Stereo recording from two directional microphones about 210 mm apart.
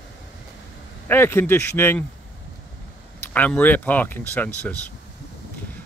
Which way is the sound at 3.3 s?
5° left (ahead or behind).